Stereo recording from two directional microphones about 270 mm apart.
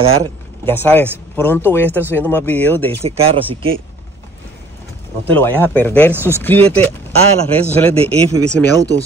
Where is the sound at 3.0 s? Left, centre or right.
Right.